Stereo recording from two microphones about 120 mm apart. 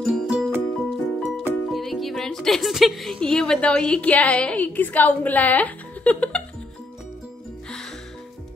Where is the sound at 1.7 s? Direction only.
Centre (ahead or behind).